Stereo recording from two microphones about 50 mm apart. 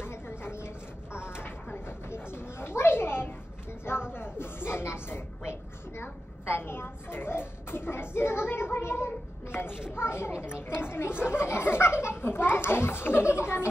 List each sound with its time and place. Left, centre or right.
0.0 s a sound: left
9.7 s speech: centre
9.9 s a child's voice: left